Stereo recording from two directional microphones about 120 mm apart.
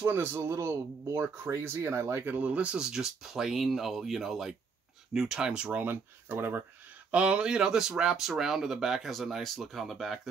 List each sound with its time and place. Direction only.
0.0 s speech: 20° right (ahead or behind); by 10.3 s centre (ahead or behind)